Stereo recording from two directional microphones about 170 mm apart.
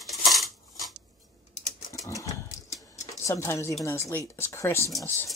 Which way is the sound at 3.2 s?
15° left (ahead or behind).